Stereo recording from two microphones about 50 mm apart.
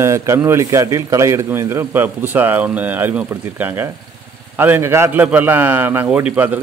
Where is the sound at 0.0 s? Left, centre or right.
Right.